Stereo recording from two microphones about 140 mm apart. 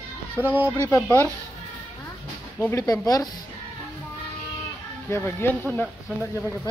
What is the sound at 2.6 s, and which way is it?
Speech, 25° left (ahead or behind).